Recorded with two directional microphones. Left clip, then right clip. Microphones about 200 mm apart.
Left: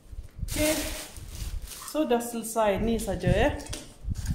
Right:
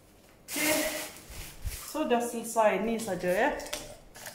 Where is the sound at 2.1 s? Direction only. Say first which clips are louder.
Left 1 dB; 50° left (ahead or behind).